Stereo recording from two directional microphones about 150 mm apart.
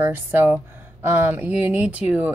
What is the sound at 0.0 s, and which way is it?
Speech, 15° right (ahead or behind).